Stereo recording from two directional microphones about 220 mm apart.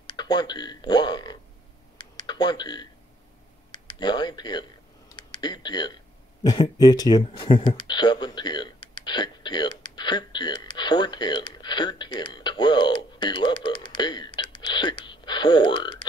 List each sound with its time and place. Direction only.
0.0 s speech: 20° left (ahead or behind)
2.0 s computer keyboard: 20° left (ahead or behind)
3.7 s speech: 20° left (ahead or behind)
5.1 s a sound: 20° left (ahead or behind)
6.4 s speech: 20° left (ahead or behind)